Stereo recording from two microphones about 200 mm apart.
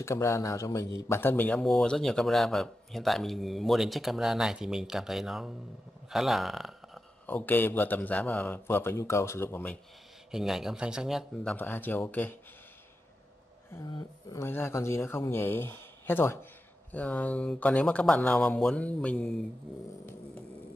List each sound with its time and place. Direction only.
0.0 s a man's voice: 15° left (ahead or behind)
10.3 s a man's voice: centre (ahead or behind)
11.5 s speech: 10° left (ahead or behind)
13.7 s speech: 15° left (ahead or behind)